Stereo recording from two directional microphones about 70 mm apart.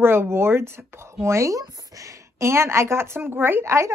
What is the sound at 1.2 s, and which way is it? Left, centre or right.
A woman's voice, right.